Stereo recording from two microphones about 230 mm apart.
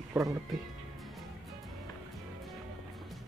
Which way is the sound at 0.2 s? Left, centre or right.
Centre.